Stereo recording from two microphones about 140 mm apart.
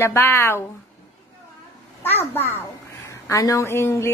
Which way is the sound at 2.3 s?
15° left (ahead or behind).